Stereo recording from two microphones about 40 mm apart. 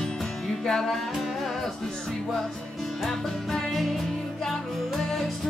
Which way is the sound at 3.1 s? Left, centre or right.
Centre.